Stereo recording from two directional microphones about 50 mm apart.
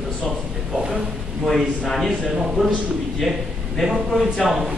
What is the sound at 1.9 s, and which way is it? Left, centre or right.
Speech, centre.